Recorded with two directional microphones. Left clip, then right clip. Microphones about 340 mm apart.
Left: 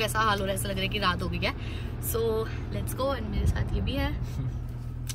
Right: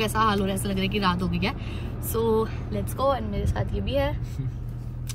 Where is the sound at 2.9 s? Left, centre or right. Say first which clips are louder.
Right 6 dB; centre.